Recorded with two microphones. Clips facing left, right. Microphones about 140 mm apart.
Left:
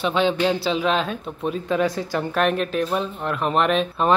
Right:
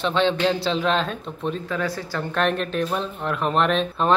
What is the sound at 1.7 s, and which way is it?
Speech, 20° left (ahead or behind).